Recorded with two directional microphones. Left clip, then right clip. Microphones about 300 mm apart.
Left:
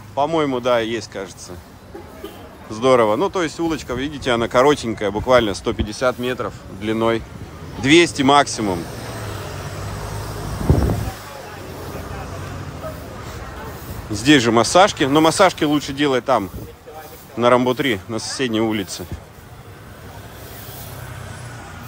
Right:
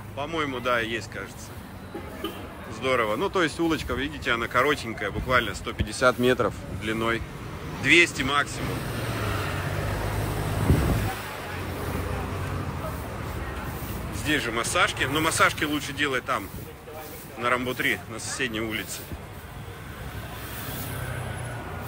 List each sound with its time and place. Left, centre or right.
0.2 s speech: centre
2.7 s speech: centre
6.8 s speech: centre
14.2 s speech: centre